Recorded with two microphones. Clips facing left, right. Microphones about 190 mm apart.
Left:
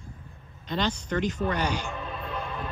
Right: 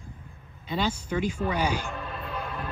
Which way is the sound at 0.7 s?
10° right (ahead or behind).